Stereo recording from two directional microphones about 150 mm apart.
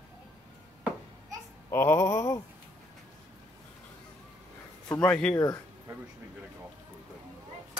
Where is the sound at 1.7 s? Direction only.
15° left (ahead or behind).